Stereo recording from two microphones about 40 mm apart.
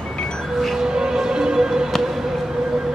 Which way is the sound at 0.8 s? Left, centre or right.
Centre.